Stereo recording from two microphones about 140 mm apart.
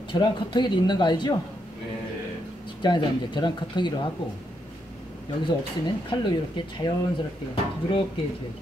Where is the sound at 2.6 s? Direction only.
35° left (ahead or behind).